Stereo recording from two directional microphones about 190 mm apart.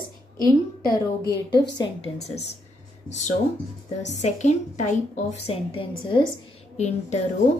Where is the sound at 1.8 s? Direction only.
35° left (ahead or behind).